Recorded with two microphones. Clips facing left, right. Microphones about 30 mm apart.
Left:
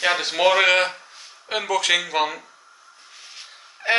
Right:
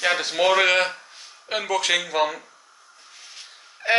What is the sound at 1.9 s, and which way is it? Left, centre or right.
Speech, centre.